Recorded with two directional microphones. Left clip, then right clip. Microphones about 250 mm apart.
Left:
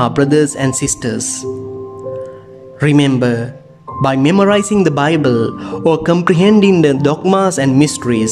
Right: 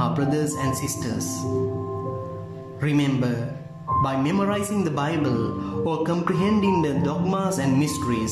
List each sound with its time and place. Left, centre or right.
0.0 s speech: left
2.8 s speech: left